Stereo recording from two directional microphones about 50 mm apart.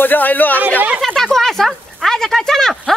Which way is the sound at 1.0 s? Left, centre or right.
Centre.